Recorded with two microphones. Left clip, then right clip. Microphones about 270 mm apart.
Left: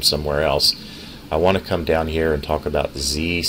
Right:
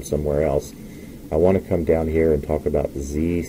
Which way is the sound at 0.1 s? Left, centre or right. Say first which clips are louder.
Left 1 dB; left.